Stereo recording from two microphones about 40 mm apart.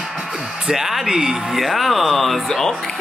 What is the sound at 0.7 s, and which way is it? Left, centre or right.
A woman's voice, centre.